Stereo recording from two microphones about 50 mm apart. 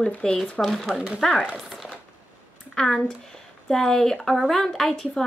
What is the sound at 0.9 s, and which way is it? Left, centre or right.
Speech, centre.